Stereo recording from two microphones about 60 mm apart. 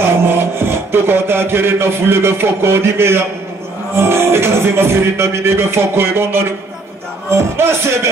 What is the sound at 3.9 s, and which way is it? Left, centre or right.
Music, right.